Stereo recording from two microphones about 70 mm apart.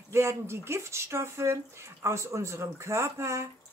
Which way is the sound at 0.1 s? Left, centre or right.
Right.